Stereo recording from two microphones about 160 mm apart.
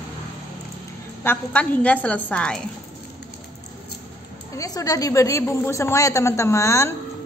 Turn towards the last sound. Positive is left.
turn(degrees=15)  # may be behind; listen again after turning